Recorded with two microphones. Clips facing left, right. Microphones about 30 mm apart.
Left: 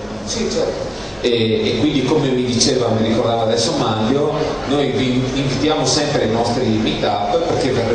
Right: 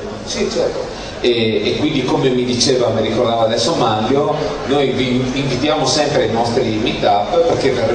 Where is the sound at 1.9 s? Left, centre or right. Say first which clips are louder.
Right 1 dB; centre.